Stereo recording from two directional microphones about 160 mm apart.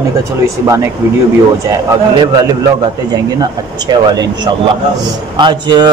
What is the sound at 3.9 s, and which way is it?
A man's voice, 25° right (ahead or behind).